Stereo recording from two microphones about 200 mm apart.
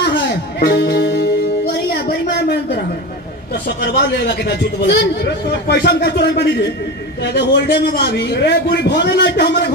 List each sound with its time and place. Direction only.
0.6 s music: 55° left (ahead or behind)
1.9 s a sound: 55° left (ahead or behind)
3.8 s a man's voice: 55° left (ahead or behind)